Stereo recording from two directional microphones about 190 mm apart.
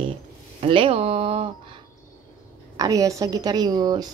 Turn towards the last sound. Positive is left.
turn(degrees=-20)  # may be behind; listen again after turning